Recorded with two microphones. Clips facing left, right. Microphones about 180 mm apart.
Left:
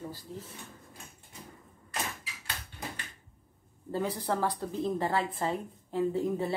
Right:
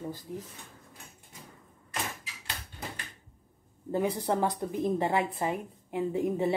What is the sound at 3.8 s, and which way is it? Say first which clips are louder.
A woman's voice: right 3 dB; 20° right (ahead or behind).